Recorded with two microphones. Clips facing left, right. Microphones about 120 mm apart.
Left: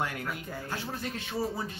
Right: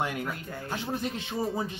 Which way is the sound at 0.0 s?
20° right (ahead or behind).